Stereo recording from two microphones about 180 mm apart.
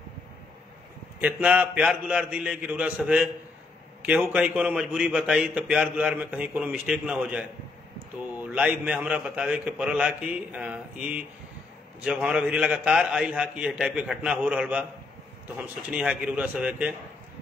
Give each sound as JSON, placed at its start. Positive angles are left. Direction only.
{"t": 1.2, "sound": "a man's voice", "side_deg": -10}
{"t": 15.9, "sound": "a man's voice", "side_deg": -5}